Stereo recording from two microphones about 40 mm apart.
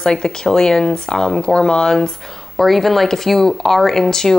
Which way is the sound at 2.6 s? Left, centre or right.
Centre.